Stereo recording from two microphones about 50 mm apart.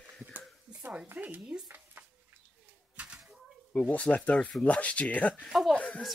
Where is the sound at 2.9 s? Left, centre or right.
Right.